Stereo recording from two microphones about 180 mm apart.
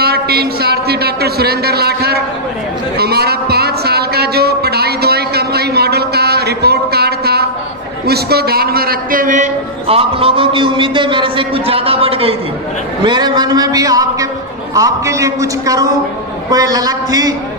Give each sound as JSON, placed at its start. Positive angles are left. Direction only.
{"t": 0.0, "sound": "a man's voice", "side_deg": -60}
{"t": 3.0, "sound": "a sound", "side_deg": -60}
{"t": 8.1, "sound": "a man's voice", "side_deg": -60}